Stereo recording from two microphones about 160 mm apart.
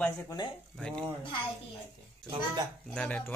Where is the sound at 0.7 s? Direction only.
5° left (ahead or behind).